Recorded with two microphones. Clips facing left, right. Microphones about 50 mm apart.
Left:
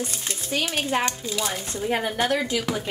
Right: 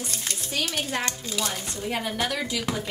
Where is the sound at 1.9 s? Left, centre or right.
Left.